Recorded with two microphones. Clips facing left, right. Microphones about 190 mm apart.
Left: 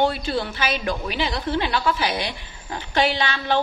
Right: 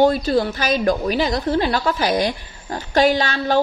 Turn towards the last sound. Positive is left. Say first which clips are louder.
# right 5 dB
turn(degrees=-45)  # may be behind; listen again after turning